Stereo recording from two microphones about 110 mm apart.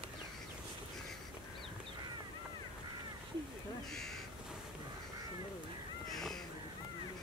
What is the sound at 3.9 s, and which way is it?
Crow, 5° left (ahead or behind).